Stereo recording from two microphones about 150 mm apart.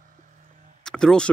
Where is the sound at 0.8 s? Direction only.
5° left (ahead or behind).